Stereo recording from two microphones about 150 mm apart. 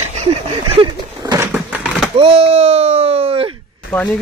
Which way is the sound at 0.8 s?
25° right (ahead or behind).